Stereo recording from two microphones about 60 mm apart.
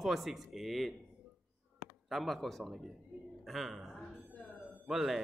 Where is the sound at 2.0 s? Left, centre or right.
Centre.